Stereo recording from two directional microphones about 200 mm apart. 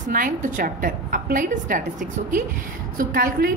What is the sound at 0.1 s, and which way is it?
A woman's voice, 45° right (ahead or behind).